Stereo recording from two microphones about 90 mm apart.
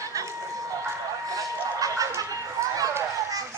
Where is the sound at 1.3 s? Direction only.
40° right (ahead or behind).